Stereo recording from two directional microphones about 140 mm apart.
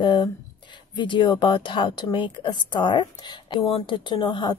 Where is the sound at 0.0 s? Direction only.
35° left (ahead or behind).